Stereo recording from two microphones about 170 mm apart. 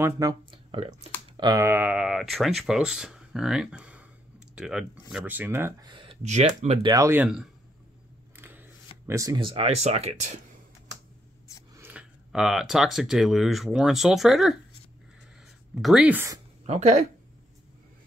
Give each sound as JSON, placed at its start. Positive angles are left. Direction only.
{"t": 0.0, "sound": "speech", "side_deg": -20}
{"t": 5.9, "sound": "a sound", "side_deg": -30}
{"t": 6.2, "sound": "speech", "side_deg": -45}
{"t": 6.8, "sound": "speech", "side_deg": -20}
{"t": 11.7, "sound": "speech", "side_deg": -10}
{"t": 15.7, "sound": "speech", "side_deg": 0}
{"t": 16.6, "sound": "speech", "side_deg": -40}